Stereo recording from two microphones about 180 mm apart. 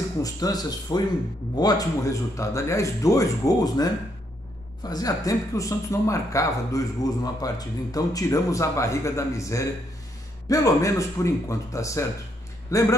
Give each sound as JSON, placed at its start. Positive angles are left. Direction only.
{"t": 0.2, "sound": "speech", "side_deg": 20}